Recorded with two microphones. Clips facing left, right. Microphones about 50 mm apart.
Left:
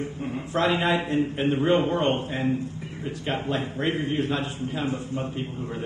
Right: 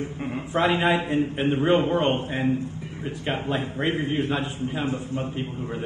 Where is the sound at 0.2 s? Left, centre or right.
Right.